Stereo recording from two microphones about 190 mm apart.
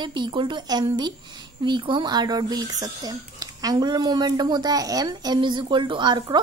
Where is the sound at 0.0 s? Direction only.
25° right (ahead or behind).